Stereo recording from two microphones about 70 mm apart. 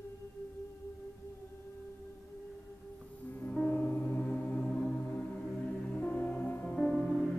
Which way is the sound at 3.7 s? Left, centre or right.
Left.